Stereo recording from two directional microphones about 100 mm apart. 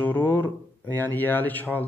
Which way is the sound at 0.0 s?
20° left (ahead or behind).